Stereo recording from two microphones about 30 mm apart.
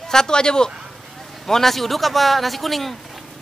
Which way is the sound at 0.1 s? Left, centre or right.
Left.